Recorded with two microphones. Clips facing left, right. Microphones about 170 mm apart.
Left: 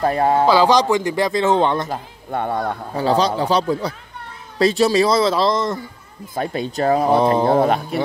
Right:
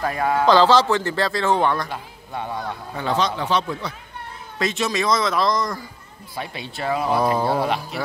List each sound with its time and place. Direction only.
0.0 s speech: 30° left (ahead or behind)
0.5 s speech: 15° left (ahead or behind)
1.9 s a man's voice: 55° left (ahead or behind)
2.9 s speech: 35° left (ahead or behind)
6.3 s speech: 45° left (ahead or behind)
7.1 s a sound: 25° left (ahead or behind)
7.4 s speech: 50° left (ahead or behind)